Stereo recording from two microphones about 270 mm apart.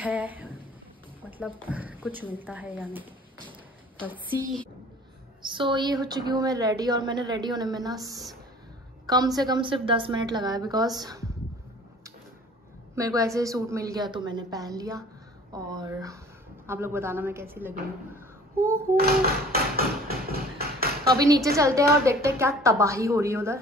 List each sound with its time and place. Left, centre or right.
0.0 s a woman's voice: centre
1.7 s speech: centre
5.4 s a woman's voice: centre
12.9 s a woman's voice: centre
18.9 s a sound: right
21.2 s a woman's voice: centre